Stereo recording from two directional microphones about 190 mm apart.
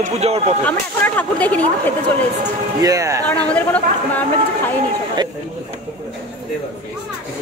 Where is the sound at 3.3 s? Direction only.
10° left (ahead or behind).